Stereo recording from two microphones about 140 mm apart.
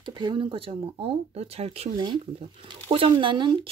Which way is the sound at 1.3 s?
45° right (ahead or behind).